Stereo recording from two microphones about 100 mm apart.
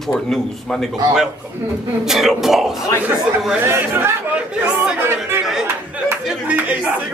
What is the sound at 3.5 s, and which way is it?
Speech, 25° right (ahead or behind).